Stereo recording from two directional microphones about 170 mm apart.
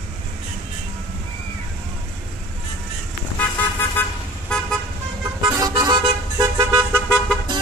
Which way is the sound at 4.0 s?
10° left (ahead or behind).